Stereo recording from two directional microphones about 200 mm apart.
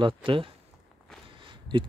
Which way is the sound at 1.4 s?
25° right (ahead or behind).